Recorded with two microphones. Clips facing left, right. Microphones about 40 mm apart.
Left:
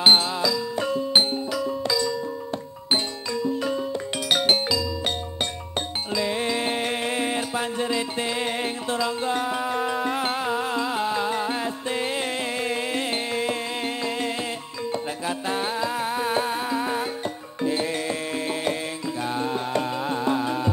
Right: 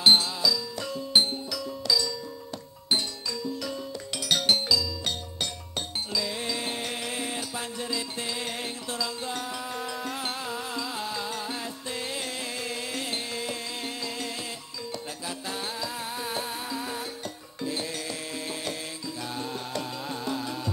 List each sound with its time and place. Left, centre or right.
0.0 s music: left